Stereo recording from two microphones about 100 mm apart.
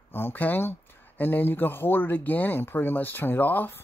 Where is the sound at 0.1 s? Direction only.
20° left (ahead or behind).